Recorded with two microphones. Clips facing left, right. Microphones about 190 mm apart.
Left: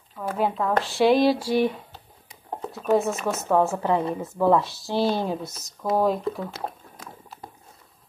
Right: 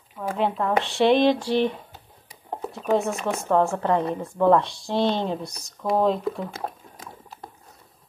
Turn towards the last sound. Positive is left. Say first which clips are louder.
# right 1 dB
turn(degrees=5)  # may be behind; listen again after turning